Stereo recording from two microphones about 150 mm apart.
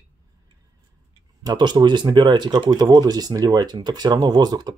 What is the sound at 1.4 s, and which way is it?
Speech, 30° right (ahead or behind).